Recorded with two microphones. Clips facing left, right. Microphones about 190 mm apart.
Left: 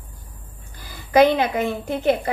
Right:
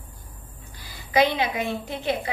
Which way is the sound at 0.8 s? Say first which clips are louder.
Left 6 dB; 50° left (ahead or behind).